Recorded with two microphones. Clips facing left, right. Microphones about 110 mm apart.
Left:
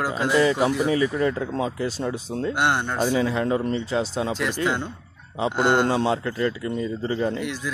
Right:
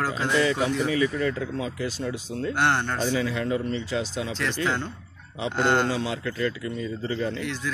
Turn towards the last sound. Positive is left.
turn(degrees=10)  # may be behind; listen again after turning